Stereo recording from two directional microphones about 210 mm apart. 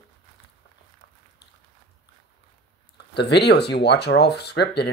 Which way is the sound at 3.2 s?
55° left (ahead or behind).